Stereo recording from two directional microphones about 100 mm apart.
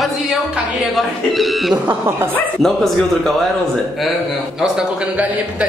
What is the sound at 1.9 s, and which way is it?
Speech, 25° right (ahead or behind).